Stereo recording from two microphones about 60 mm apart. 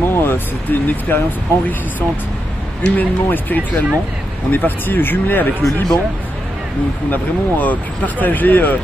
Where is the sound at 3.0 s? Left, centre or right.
Left.